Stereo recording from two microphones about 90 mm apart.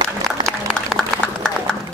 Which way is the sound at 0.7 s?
10° left (ahead or behind).